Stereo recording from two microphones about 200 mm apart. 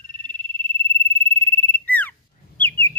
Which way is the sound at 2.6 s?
10° left (ahead or behind).